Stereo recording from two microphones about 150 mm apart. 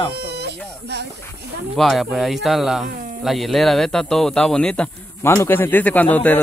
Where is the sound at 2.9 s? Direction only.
65° right (ahead or behind).